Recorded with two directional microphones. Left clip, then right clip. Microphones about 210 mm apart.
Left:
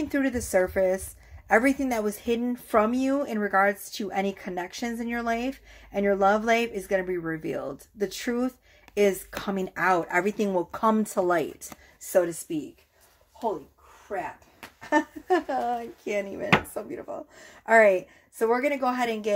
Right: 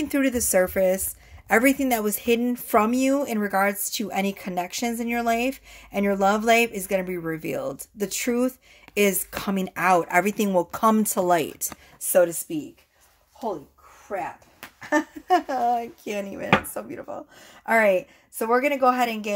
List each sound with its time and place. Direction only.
0.0 s a woman's voice: 40° right (ahead or behind)
14.1 s speech: 10° right (ahead or behind)
14.8 s a woman's voice: 25° right (ahead or behind)